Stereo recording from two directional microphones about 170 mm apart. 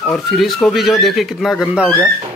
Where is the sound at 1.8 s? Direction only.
10° left (ahead or behind).